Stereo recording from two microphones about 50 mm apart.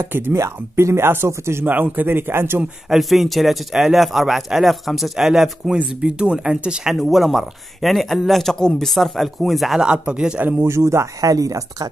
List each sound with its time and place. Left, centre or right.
0.3 s speech: right
1.7 s a man's voice: right
2.0 s speech: right
2.9 s speech: centre
9.8 s speech: right
10.6 s speech: right